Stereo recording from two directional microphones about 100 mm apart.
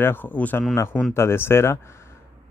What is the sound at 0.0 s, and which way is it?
Speech, 20° left (ahead or behind).